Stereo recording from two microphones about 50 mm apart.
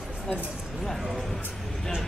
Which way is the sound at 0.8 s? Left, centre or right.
Centre.